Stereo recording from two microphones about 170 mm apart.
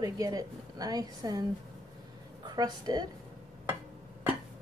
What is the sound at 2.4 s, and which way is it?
Speech, 25° right (ahead or behind).